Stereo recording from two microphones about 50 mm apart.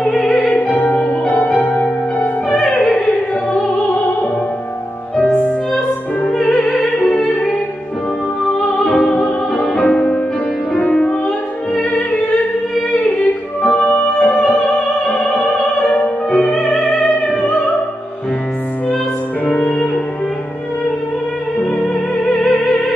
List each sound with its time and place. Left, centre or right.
0.1 s opera: centre
0.4 s music: left
2.7 s opera: left
5.2 s music: left
8.5 s music: left
9.0 s music: centre
9.6 s music: left
19.4 s music: left
21.5 s music: left